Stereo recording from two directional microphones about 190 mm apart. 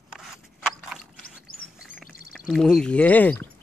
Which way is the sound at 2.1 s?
50° left (ahead or behind).